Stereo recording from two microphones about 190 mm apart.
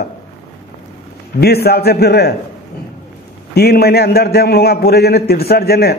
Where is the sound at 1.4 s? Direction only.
55° left (ahead or behind).